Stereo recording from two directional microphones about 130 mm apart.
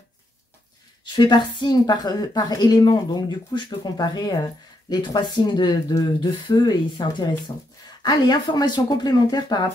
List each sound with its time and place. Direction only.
1.0 s a woman's voice: 35° left (ahead or behind)